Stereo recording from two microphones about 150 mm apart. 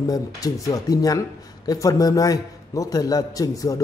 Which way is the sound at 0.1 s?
25° left (ahead or behind).